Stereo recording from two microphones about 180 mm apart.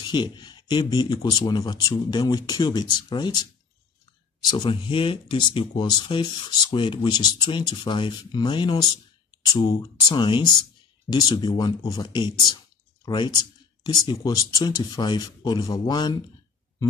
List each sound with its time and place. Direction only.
0.0 s speech: 25° left (ahead or behind)
4.4 s speech: 25° left (ahead or behind)